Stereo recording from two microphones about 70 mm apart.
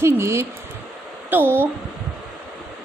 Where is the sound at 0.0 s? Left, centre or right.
Right.